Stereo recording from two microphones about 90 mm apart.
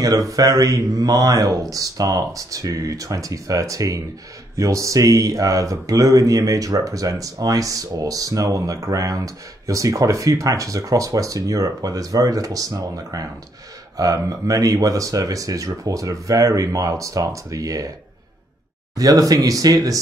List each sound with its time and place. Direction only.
0.0 s speech: 40° right (ahead or behind)
18.9 s speech: 40° right (ahead or behind)